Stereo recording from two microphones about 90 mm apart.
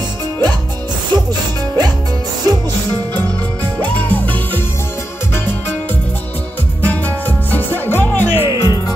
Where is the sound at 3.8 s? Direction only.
20° left (ahead or behind).